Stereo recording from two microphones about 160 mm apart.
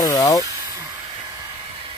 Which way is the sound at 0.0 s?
20° left (ahead or behind).